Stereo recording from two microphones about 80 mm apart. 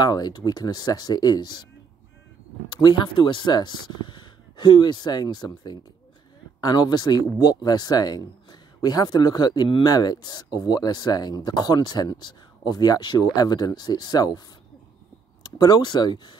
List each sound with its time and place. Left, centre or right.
0.0 s speech: left
2.7 s speech: left
9.8 s speech: left
15.4 s speech: left